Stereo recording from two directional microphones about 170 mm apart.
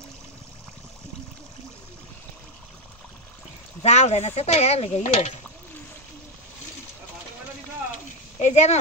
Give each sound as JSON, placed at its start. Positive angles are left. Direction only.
{"t": 3.8, "sound": "speech", "side_deg": 40}
{"t": 8.4, "sound": "speech", "side_deg": 40}